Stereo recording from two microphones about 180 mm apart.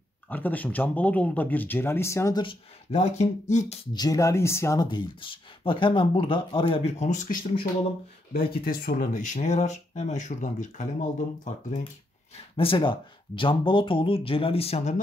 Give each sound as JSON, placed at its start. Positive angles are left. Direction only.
{"t": 0.3, "sound": "speech", "side_deg": 10}
{"t": 2.9, "sound": "speech", "side_deg": 40}
{"t": 3.9, "sound": "speech", "side_deg": 20}
{"t": 12.5, "sound": "speech", "side_deg": 30}